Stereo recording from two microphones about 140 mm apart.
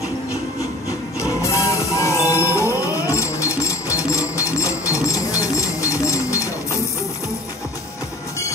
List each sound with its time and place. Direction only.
1.2 s music: 20° left (ahead or behind)